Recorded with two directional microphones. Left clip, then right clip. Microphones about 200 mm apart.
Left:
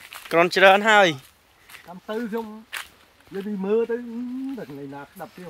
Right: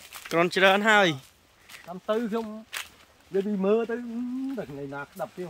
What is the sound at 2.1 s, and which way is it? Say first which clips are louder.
Speech: right 1 dB; 30° right (ahead or behind).